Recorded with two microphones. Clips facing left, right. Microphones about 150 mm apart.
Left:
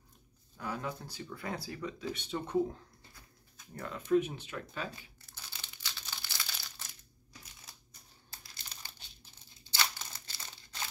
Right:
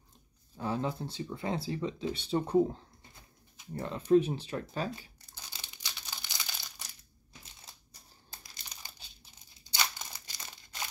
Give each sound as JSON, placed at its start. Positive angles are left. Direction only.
{"t": 0.6, "sound": "speech", "side_deg": -30}
{"t": 5.5, "sound": "crumpling", "side_deg": -20}
{"t": 8.3, "sound": "crumpling", "side_deg": -15}